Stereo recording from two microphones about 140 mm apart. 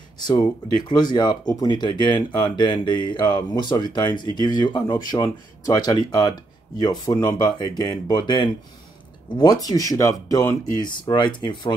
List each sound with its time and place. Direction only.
0.2 s speech: 30° left (ahead or behind)